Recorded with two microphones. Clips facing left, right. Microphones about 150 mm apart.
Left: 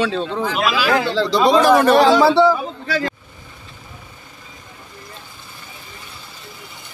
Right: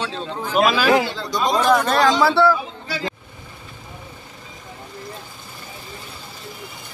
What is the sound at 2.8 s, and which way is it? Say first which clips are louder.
Speech: left 5 dB; 55° left (ahead or behind).